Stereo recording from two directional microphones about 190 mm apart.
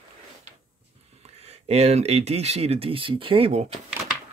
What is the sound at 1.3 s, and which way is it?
Speech, 35° right (ahead or behind).